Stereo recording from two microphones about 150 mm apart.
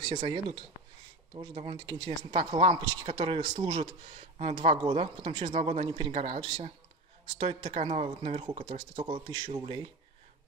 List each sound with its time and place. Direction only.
0.0 s speech: 25° right (ahead or behind)